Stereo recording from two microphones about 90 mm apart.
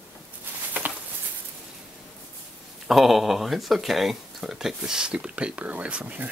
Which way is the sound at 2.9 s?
Centre (ahead or behind).